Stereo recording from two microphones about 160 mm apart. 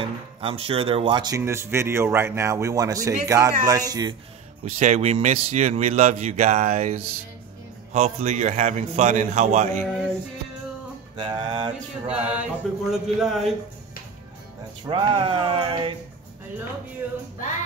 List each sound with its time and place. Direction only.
0.0 s speech: 35° right (ahead or behind)
4.6 s speech: 45° right (ahead or behind)
11.1 s speech: 30° right (ahead or behind)
12.3 s mantra: 5° right (ahead or behind)
14.9 s a sound: 30° right (ahead or behind)